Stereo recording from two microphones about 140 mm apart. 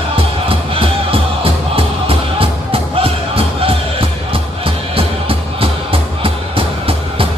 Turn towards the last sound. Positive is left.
turn(degrees=-40)  # may be behind; listen again after turning